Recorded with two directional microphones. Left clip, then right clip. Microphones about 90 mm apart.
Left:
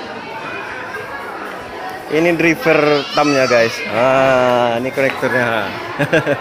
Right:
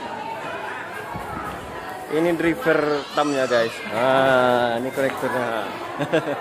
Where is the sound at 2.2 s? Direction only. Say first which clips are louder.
Left 7 dB; 20° left (ahead or behind).